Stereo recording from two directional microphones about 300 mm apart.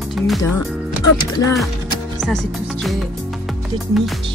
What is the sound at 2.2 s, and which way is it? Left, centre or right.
Music, centre.